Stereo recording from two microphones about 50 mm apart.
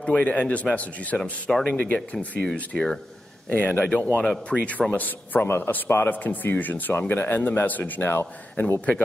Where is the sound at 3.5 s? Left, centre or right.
Left.